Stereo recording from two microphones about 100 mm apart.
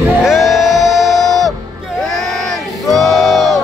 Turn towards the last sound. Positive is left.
turn(degrees=0)  # may be behind; listen again after turning